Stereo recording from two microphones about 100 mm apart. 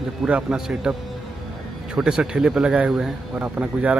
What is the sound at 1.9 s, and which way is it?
Speech, 5° right (ahead or behind).